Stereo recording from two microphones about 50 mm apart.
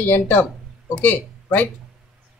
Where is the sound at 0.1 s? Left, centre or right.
Left.